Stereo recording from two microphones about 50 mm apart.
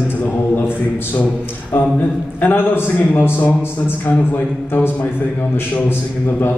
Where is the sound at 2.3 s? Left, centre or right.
Left.